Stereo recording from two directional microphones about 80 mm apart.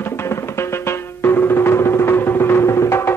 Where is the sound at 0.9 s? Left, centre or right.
Left.